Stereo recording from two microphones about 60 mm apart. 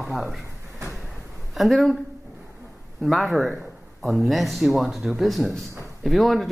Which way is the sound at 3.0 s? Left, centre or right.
Centre.